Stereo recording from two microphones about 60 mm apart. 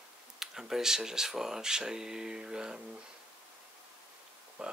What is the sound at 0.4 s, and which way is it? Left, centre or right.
Speech, centre.